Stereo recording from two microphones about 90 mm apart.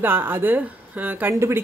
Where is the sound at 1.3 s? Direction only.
30° right (ahead or behind).